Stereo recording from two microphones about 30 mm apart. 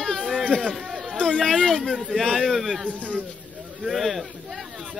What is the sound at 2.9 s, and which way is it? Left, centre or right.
Speech, right.